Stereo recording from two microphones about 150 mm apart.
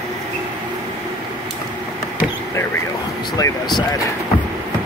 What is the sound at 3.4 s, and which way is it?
Speech, 30° left (ahead or behind).